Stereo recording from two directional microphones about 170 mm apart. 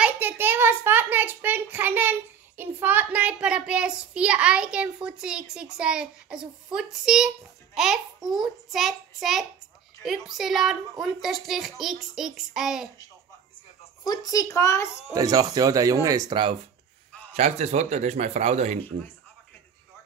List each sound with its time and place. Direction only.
0.0 s a child's voice: 10° right (ahead or behind)
14.0 s a child's voice: 20° left (ahead or behind)
15.1 s speech: 20° right (ahead or behind)
17.3 s speech: 40° right (ahead or behind)